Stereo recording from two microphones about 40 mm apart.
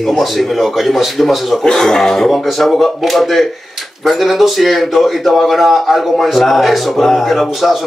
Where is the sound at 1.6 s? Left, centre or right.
Centre.